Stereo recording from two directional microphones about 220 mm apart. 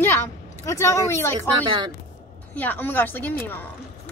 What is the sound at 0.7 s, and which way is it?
Speech, 10° left (ahead or behind).